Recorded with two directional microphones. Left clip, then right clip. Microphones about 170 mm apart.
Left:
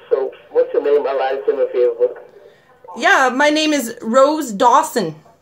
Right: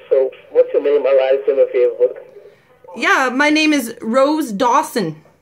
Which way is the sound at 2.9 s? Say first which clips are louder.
Left 2 dB; 60° right (ahead or behind).